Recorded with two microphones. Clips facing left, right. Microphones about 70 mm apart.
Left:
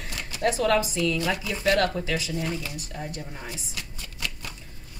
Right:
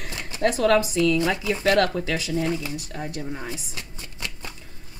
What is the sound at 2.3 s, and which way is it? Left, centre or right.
Speech, right.